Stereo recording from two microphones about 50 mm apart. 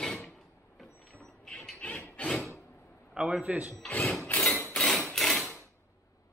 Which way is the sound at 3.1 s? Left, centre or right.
Centre.